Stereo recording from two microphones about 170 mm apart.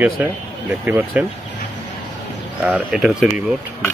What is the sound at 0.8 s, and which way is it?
Speech, 10° right (ahead or behind).